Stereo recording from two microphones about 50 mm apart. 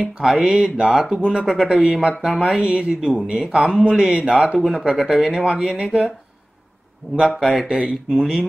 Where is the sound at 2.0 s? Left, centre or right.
Centre.